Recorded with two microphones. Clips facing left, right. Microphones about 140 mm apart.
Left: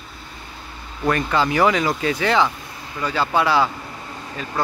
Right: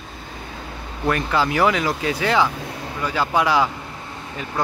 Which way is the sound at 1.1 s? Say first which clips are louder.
Left 1 dB; 5° right (ahead or behind).